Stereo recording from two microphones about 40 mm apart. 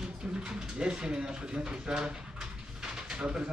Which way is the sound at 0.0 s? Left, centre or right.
Right.